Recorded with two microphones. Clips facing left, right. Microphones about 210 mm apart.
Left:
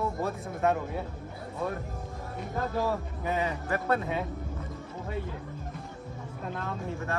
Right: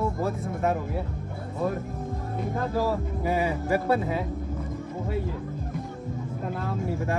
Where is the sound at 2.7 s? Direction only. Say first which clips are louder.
Right 4 dB; 5° right (ahead or behind).